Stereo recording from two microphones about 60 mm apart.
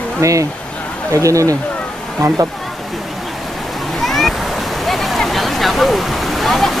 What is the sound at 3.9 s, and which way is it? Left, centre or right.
Waves, centre.